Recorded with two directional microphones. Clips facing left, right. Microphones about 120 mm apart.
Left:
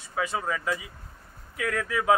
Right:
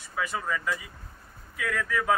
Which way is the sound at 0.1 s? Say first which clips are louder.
Left 2 dB; 25° left (ahead or behind).